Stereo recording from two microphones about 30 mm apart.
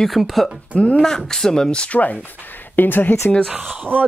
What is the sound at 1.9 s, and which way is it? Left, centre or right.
Speech, left.